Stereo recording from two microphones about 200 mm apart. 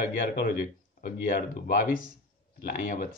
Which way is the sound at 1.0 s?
50° left (ahead or behind).